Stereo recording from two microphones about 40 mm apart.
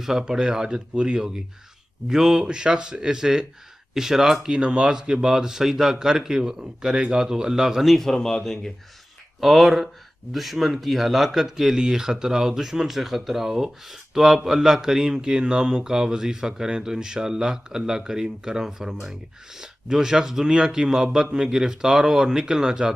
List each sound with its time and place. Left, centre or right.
0.0 s a man's voice: centre
4.6 s a man's voice: right
7.8 s speech: centre
9.4 s a man's voice: centre